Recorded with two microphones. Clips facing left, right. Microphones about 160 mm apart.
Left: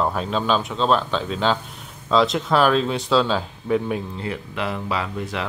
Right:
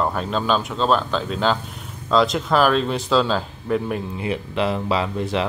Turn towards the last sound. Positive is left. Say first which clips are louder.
# right 4 dB
turn(degrees=-25)  # may be behind; listen again after turning